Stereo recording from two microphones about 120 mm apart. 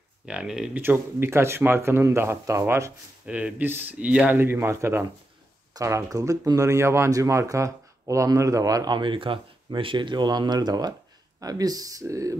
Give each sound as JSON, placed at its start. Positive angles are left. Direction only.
{"t": 0.3, "sound": "speech", "side_deg": -5}
{"t": 0.8, "sound": "speech", "side_deg": -20}
{"t": 3.3, "sound": "speech", "side_deg": -10}